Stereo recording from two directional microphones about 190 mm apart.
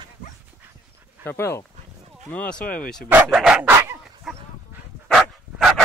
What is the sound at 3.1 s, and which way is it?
Dog, 5° right (ahead or behind).